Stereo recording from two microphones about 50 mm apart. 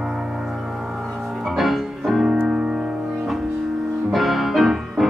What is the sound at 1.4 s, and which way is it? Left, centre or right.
Music, centre.